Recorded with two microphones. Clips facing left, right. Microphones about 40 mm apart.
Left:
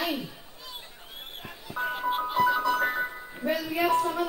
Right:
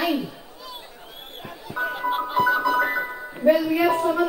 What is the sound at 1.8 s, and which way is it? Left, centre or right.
Music, right.